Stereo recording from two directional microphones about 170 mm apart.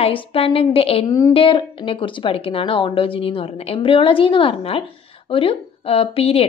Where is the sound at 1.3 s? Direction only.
30° left (ahead or behind).